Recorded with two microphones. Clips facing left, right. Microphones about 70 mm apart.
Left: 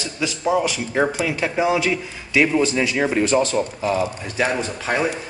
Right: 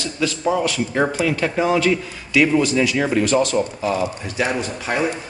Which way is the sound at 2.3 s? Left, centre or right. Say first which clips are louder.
Right 2 dB; left.